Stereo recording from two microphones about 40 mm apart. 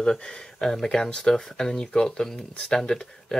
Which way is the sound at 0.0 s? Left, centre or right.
Centre.